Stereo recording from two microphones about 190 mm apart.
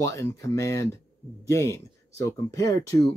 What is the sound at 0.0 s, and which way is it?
Speech, 15° left (ahead or behind).